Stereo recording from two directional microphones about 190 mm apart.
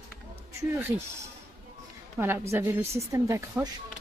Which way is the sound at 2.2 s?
10° right (ahead or behind).